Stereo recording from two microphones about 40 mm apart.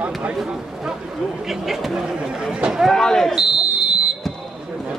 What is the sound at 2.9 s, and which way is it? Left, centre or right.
Speech, centre.